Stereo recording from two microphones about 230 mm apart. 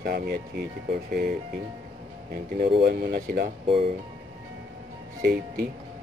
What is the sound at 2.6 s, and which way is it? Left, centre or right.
Speech, right.